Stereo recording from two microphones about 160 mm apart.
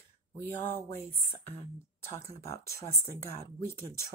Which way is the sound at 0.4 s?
10° left (ahead or behind).